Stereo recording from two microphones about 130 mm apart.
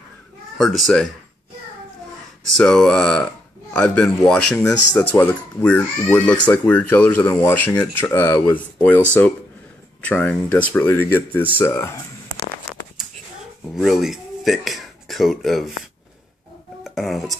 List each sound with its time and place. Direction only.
0.6 s speech: centre (ahead or behind)
2.5 s speech: 5° left (ahead or behind)
10.0 s speech: 10° left (ahead or behind)
13.7 s speech: centre (ahead or behind)
16.8 s speech: centre (ahead or behind)